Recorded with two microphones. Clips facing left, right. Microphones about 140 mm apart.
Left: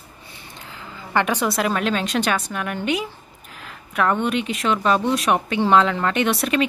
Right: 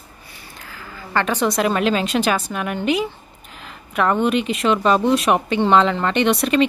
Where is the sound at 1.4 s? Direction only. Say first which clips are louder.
Right 3 dB; centre (ahead or behind).